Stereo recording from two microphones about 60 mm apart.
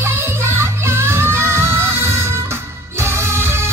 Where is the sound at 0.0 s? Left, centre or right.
Right.